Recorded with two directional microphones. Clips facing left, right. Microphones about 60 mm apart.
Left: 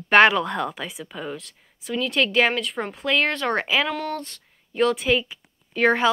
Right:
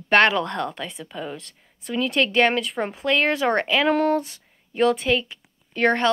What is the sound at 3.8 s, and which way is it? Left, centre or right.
Speech, right.